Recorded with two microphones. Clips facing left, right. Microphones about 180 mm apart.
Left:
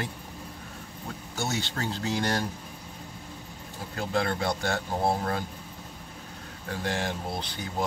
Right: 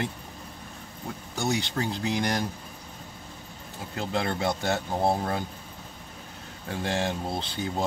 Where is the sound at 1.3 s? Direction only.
15° right (ahead or behind).